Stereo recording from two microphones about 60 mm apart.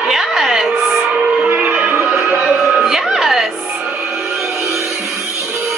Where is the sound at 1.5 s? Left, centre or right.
Right.